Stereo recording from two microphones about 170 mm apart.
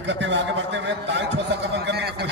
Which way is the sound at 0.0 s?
90° right.